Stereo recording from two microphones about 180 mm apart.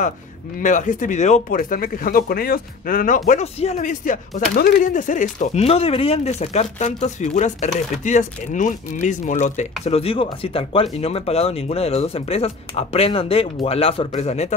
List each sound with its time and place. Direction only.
0.6 s speech: 45° left (ahead or behind)
3.3 s speech: 40° left (ahead or behind)
9.8 s speech: 35° left (ahead or behind)